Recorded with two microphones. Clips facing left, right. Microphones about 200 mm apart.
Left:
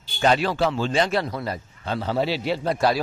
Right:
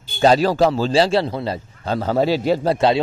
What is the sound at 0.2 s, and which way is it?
A man's voice, 35° right (ahead or behind).